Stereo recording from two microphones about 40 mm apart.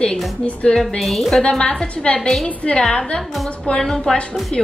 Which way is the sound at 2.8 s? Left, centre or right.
Centre.